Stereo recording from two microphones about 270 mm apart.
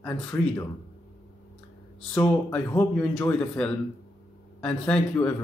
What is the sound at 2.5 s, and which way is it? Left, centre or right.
Speech, centre.